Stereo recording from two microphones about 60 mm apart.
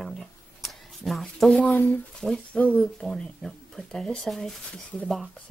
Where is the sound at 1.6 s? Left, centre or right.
Left.